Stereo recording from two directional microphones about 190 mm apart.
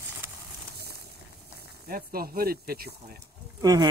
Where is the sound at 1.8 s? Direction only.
50° right (ahead or behind).